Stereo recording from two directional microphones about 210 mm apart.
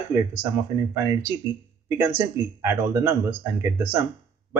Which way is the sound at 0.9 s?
15° right (ahead or behind).